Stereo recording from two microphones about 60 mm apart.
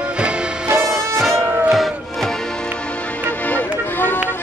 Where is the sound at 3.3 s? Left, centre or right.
Left.